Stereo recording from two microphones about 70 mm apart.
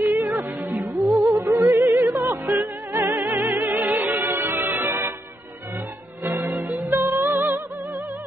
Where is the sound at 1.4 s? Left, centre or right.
Right.